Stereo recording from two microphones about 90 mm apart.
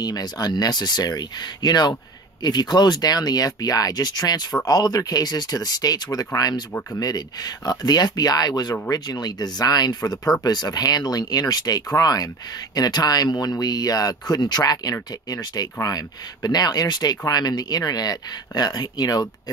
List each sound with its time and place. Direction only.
0.0 s speech: 45° left (ahead or behind)